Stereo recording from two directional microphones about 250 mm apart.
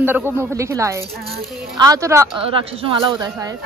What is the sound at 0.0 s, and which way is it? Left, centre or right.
Speech, centre.